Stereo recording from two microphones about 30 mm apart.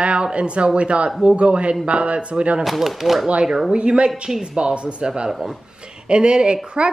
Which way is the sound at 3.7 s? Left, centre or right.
Right.